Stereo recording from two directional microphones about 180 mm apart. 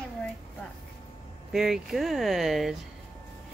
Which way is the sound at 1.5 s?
Centre (ahead or behind).